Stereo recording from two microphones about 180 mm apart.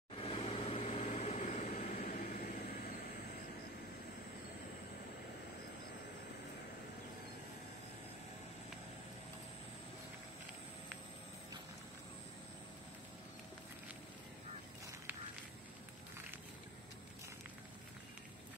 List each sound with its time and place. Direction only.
0.1 s vehicle: 30° left (ahead or behind)
2.0 s vehicle: 55° left (ahead or behind)